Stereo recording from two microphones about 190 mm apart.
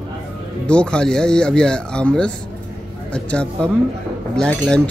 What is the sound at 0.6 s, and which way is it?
Speech, 5° left (ahead or behind).